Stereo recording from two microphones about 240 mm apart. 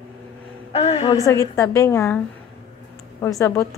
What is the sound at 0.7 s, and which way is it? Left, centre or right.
Speech, left.